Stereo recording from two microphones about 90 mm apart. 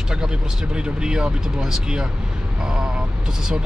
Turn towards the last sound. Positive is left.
turn(degrees=-5)  # may be behind; listen again after turning